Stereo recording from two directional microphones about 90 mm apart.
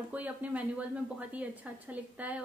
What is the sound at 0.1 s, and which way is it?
A woman's voice, 15° right (ahead or behind).